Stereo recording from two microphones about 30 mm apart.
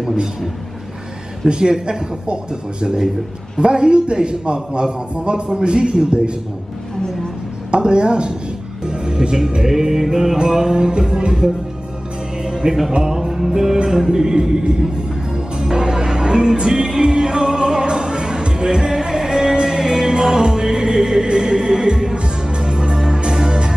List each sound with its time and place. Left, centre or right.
0.0 s a man's voice: centre
1.5 s music: right
3.5 s a man's voice: right
7.7 s a man's voice: right
9.7 s music: centre
12.6 s music: right